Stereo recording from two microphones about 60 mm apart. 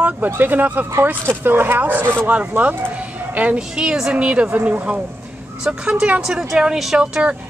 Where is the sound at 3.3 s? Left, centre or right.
Right.